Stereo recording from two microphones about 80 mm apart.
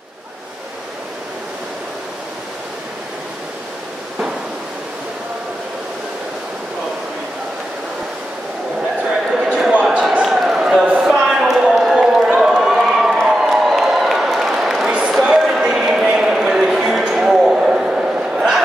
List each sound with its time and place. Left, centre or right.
9.3 s basketball bounce: centre
9.8 s basketball bounce: centre
10.2 s a sound: centre